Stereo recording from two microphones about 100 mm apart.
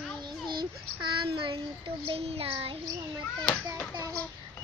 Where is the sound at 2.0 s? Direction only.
75° right (ahead or behind).